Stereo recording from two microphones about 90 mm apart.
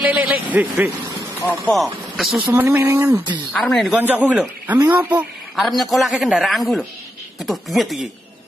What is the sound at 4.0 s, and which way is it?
A man's voice, 20° right (ahead or behind).